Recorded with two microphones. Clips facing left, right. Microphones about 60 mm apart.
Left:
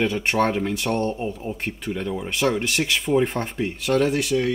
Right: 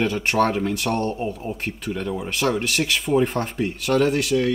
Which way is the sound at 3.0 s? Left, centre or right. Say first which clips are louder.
Right 1 dB; centre.